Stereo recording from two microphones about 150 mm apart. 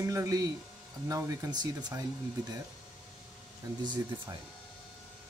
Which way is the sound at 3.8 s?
30° right (ahead or behind).